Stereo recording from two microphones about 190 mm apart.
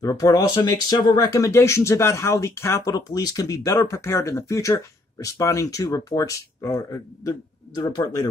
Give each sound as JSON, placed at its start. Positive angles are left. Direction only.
{"t": 0.0, "sound": "speech", "side_deg": 20}